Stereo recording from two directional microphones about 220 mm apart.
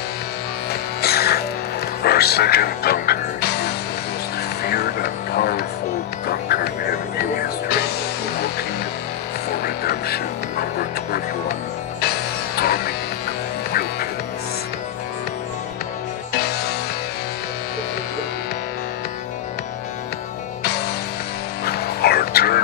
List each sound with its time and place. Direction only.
1.0 s music: 45° left (ahead or behind)
9.5 s music: 45° left (ahead or behind)
13.7 s quack: 45° left (ahead or behind)
21.6 s a sound: 45° left (ahead or behind)